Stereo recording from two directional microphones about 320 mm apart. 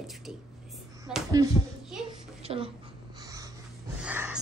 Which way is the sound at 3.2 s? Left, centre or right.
Centre.